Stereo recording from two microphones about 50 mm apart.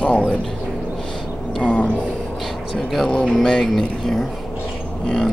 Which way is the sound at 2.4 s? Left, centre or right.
Centre.